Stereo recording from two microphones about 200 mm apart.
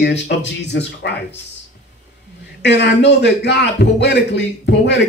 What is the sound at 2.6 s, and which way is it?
Speech, 60° left (ahead or behind).